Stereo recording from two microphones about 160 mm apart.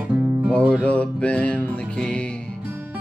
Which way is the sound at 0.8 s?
10° left (ahead or behind).